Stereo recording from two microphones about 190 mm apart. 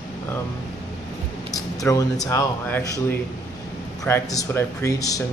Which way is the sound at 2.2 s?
15° left (ahead or behind).